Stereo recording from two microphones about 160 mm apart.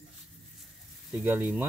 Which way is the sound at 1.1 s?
15° right (ahead or behind).